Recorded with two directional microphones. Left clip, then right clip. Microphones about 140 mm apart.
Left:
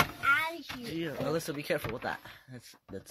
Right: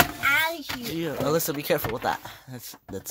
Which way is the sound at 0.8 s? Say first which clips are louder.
Right 7 dB; 30° right (ahead or behind).